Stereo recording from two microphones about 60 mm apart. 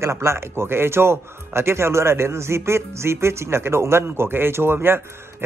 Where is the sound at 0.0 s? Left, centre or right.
Right.